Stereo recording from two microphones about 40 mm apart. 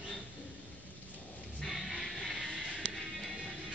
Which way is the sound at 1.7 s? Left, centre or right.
Centre.